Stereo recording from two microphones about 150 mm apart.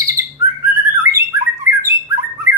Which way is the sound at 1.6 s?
20° right (ahead or behind).